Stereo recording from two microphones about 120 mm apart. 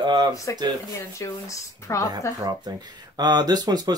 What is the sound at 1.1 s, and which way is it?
Speech, 25° left (ahead or behind).